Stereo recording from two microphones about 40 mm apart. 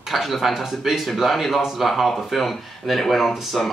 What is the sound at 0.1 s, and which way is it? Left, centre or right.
Speech, centre.